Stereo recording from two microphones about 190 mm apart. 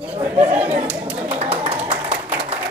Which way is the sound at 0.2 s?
10° right (ahead or behind).